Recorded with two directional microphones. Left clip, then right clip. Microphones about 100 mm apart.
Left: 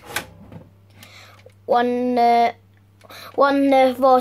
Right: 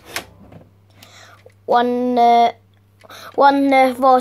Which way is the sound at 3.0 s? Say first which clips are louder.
Right 2 dB; 15° right (ahead or behind).